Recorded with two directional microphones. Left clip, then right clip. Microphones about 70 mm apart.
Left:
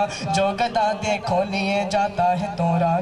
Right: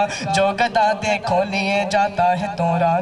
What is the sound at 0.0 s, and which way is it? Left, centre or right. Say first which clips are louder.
Speech: right 3 dB; right.